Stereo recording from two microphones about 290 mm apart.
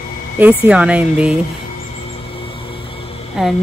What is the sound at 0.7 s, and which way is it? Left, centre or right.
Speech, centre.